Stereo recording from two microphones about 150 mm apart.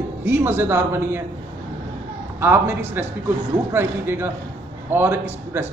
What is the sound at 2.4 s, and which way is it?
Speech, 15° right (ahead or behind).